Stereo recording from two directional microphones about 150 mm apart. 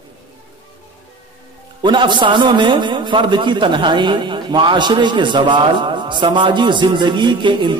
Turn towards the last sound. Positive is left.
turn(degrees=-30)  # may be behind; listen again after turning